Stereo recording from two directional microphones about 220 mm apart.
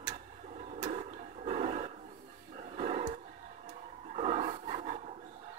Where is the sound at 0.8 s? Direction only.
30° right (ahead or behind).